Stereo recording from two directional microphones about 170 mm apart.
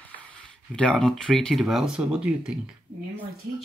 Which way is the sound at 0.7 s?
5° left (ahead or behind).